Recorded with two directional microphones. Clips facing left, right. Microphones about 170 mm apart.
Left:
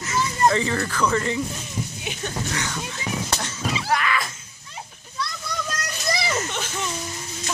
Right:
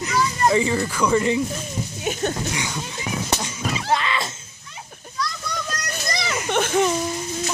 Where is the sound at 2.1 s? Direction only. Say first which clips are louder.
Right 7 dB; 45° right (ahead or behind).